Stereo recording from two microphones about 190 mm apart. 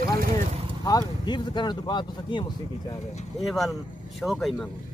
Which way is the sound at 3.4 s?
Centre (ahead or behind).